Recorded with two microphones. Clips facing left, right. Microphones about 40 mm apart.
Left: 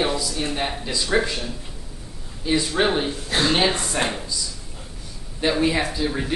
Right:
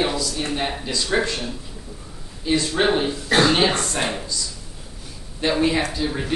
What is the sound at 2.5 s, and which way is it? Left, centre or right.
Speech, centre.